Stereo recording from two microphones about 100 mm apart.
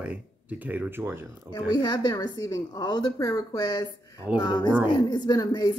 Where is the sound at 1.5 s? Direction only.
45° left (ahead or behind).